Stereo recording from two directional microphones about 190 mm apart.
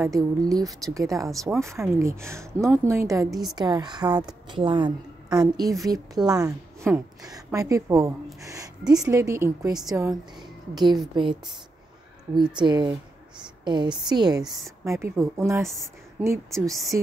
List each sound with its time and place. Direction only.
0.0 s a woman's voice: 15° right (ahead or behind)
3.3 s a woman's voice: centre (ahead or behind)
3.5 s a woman's voice: 20° right (ahead or behind)
12.5 s a woman's voice: 25° right (ahead or behind)
15.7 s a woman's voice: centre (ahead or behind)
16.3 s a woman's voice: 15° right (ahead or behind)